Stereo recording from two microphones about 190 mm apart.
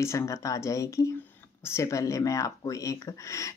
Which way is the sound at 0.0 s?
15° left (ahead or behind).